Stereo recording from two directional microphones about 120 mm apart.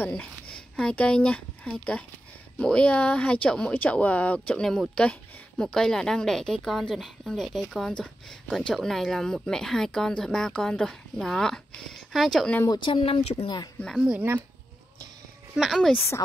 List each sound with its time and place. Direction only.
0.0 s speech: 10° left (ahead or behind)
12.6 s speech: 40° left (ahead or behind)
13.9 s speech: 5° right (ahead or behind)
15.5 s speech: centre (ahead or behind)